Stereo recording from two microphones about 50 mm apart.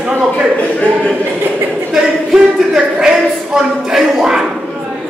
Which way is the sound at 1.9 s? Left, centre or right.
Centre.